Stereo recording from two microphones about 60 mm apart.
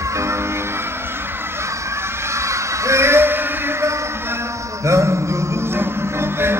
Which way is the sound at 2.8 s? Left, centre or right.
Right.